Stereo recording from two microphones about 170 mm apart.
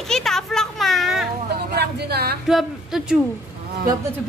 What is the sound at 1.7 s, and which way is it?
Speech, 70° right (ahead or behind).